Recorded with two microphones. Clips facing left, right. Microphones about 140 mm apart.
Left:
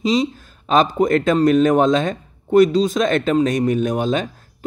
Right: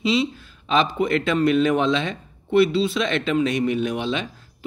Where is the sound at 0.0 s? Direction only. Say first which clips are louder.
Left 3 dB; 40° left (ahead or behind).